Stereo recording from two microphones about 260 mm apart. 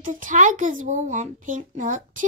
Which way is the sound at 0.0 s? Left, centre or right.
Right.